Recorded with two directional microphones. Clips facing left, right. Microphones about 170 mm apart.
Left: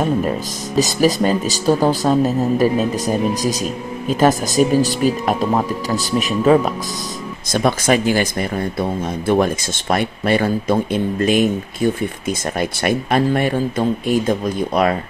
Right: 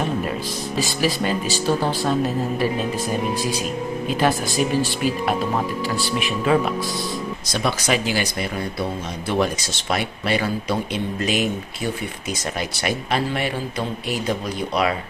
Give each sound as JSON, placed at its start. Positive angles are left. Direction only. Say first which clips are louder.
{"t": 0.7, "sound": "speech", "louder": "left 8 dB", "side_deg": 40}